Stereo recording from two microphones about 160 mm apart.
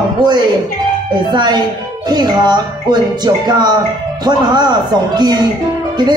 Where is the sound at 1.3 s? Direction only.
25° right (ahead or behind).